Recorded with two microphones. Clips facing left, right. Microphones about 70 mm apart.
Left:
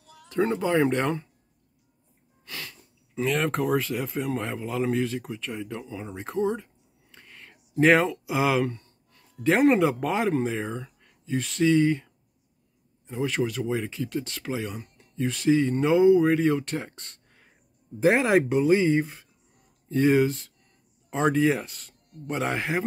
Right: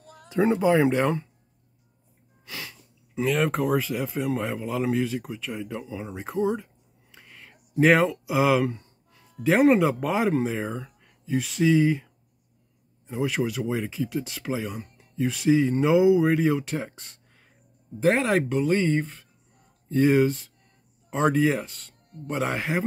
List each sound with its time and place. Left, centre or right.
0.0 s a sound: right
0.3 s speech: centre
2.4 s speech: centre
8.7 s speech: centre